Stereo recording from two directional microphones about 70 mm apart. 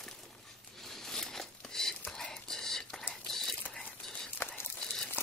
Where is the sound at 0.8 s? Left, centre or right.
Centre.